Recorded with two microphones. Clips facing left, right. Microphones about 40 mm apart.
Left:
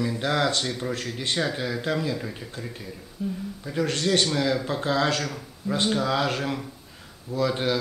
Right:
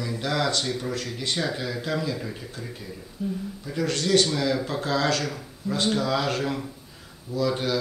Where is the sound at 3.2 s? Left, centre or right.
Centre.